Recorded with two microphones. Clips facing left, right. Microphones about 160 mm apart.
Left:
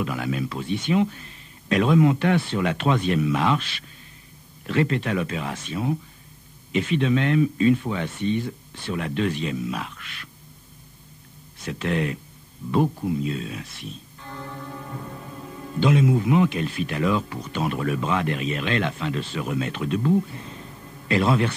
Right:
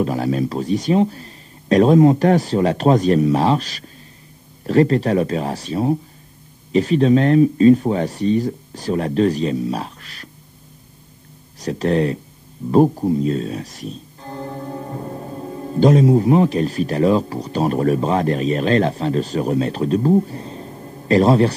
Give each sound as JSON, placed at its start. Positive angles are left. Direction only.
{"t": 0.0, "sound": "speech", "side_deg": -35}
{"t": 11.6, "sound": "speech", "side_deg": -35}